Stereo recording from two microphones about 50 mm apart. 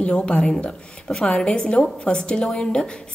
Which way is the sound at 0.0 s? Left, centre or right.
Centre.